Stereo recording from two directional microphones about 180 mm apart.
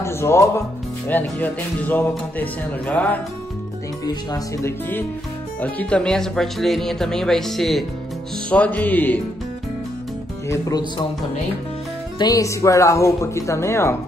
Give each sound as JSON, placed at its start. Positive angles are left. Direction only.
{"t": 0.0, "sound": "music", "side_deg": 15}
{"t": 1.0, "sound": "speech", "side_deg": 10}
{"t": 4.0, "sound": "speech", "side_deg": 20}
{"t": 5.6, "sound": "speech", "side_deg": 5}
{"t": 10.5, "sound": "speech", "side_deg": 20}
{"t": 12.2, "sound": "speech", "side_deg": 20}